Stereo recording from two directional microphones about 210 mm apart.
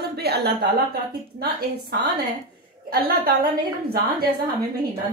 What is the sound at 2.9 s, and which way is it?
A woman's voice, 45° right (ahead or behind).